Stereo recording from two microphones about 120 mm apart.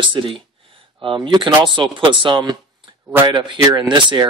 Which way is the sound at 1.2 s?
40° right (ahead or behind).